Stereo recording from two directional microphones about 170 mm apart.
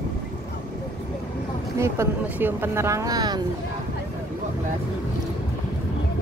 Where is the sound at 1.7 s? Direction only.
15° right (ahead or behind).